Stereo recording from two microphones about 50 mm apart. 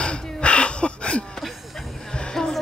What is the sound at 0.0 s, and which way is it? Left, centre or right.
Gasp, left.